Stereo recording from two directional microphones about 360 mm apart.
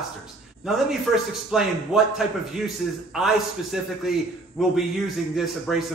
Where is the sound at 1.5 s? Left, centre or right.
Centre.